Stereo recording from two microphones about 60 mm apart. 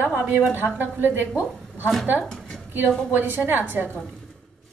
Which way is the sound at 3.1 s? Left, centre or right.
Right.